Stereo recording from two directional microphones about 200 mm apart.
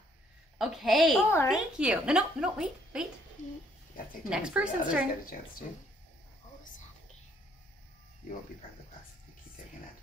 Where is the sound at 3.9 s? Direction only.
45° left (ahead or behind).